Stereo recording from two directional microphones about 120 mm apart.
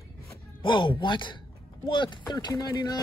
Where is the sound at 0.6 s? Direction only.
45° left (ahead or behind).